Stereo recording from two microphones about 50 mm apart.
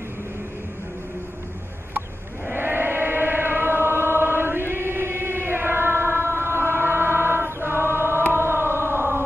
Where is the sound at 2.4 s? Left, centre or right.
Right.